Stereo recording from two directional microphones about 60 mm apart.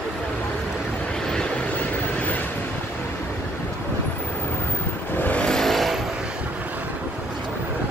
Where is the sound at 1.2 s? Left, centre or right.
Centre.